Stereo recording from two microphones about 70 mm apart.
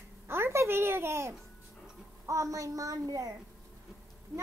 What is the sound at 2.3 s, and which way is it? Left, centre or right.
A child's voice, right.